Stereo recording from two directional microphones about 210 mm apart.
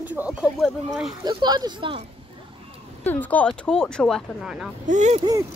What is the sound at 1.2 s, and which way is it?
Speech, 20° right (ahead or behind).